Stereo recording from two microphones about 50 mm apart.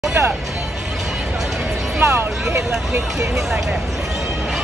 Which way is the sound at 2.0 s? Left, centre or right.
Right.